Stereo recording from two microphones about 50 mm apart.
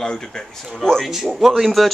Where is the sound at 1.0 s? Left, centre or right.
Centre.